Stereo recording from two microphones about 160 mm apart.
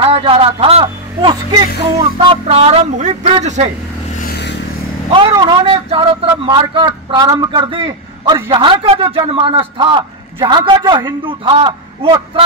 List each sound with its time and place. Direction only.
0.0 s a man's voice: 35° right (ahead or behind)
4.3 s vehicle: 90° left
5.4 s a man's voice: 30° right (ahead or behind)